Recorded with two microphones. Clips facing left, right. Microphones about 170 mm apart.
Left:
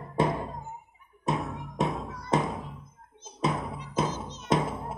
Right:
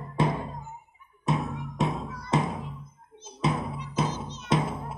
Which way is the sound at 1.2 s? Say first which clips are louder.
Right 2 dB; 50° left (ahead or behind).